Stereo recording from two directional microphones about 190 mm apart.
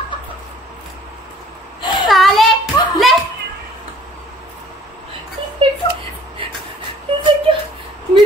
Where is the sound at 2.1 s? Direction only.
Centre (ahead or behind).